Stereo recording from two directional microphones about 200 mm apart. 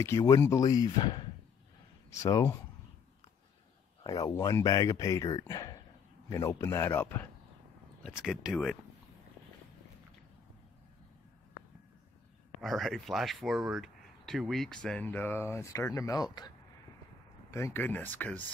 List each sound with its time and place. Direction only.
0.0 s speech: 15° left (ahead or behind)
4.0 s speech: 20° left (ahead or behind)
8.0 s speech: 5° right (ahead or behind)
12.6 s speech: centre (ahead or behind)